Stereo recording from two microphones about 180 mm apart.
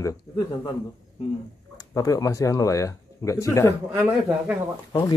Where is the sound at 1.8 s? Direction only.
20° left (ahead or behind).